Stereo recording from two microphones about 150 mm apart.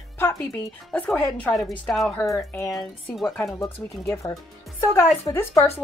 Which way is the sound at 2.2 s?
20° left (ahead or behind).